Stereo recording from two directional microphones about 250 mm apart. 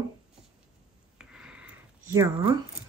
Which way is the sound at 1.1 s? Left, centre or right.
Centre.